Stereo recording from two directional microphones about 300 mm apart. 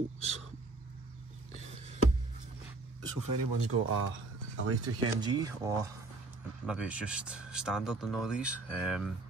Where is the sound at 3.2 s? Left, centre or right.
Right.